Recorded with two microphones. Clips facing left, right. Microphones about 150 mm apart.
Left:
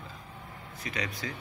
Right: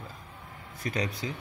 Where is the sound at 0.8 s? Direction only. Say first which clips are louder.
Right 5 dB; 45° right (ahead or behind).